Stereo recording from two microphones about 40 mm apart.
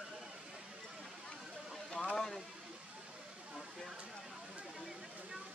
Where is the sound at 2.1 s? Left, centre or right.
Centre.